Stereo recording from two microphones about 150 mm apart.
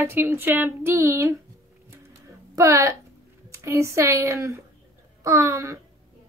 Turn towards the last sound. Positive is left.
turn(degrees=-20)  # may be behind; listen again after turning